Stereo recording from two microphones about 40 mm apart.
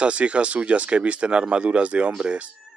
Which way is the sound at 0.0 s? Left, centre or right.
Right.